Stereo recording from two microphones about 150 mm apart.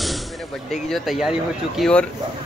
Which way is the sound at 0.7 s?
Centre (ahead or behind).